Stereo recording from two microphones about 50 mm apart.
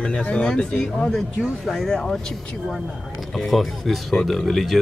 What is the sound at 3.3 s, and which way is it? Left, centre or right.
Speech, centre.